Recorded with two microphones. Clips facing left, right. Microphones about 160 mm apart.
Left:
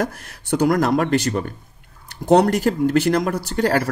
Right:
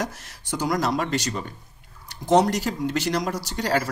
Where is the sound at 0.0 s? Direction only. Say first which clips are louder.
Left 6 dB; 60° left (ahead or behind).